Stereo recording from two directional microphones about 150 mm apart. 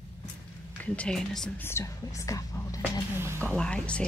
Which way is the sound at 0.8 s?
5° left (ahead or behind).